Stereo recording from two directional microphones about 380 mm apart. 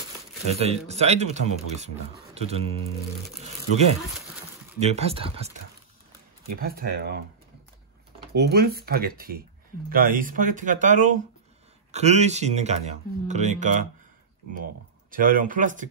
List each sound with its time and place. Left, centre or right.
0.5 s speech: centre
4.7 s speech: centre
6.5 s speech: right
8.4 s speech: right
15.0 s speech: right